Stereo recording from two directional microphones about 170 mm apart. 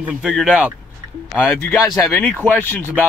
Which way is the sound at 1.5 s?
10° left (ahead or behind).